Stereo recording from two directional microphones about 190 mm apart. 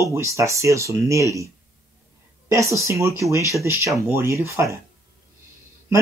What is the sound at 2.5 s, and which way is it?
Speech, 15° right (ahead or behind).